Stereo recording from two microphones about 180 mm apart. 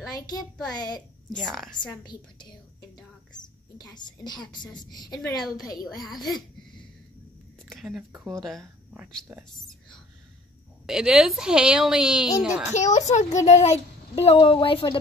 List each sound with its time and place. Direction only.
0.1 s a child's voice: 20° left (ahead or behind)
1.3 s a woman's voice: centre (ahead or behind)
3.3 s a woman's voice: 25° left (ahead or behind)
5.4 s a woman's voice: centre (ahead or behind)
5.7 s a woman's voice: 20° left (ahead or behind)
7.7 s a woman's voice: centre (ahead or behind)
8.1 s speech: 15° right (ahead or behind)
8.4 s a woman's voice: centre (ahead or behind)
10.9 s a woman's voice: 5° right (ahead or behind)
12.7 s a woman's voice: 40° left (ahead or behind)